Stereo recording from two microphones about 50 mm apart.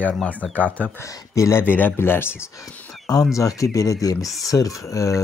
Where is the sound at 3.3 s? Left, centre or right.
Left.